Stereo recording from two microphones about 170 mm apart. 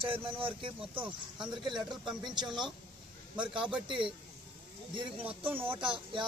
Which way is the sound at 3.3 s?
30° right (ahead or behind).